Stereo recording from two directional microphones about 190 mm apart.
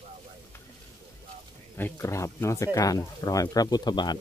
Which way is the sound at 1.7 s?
15° left (ahead or behind).